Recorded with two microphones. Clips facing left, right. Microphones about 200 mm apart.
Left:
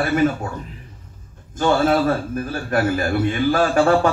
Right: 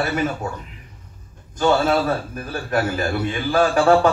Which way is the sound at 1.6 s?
50° left (ahead or behind).